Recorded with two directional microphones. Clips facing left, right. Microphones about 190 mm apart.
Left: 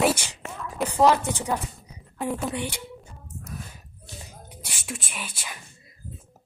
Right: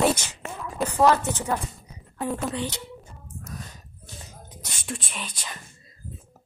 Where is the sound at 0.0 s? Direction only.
10° left (ahead or behind).